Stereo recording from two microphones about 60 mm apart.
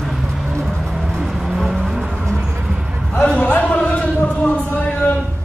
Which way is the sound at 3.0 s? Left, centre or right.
Centre.